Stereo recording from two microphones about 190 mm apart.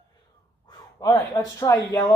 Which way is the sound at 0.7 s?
20° left (ahead or behind).